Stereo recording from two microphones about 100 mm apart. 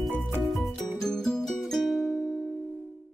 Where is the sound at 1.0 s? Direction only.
5° left (ahead or behind).